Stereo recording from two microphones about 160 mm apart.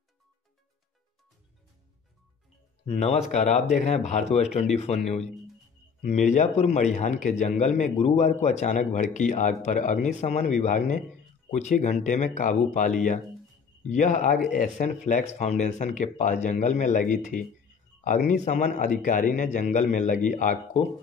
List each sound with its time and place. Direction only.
2.8 s a man's voice: 40° left (ahead or behind)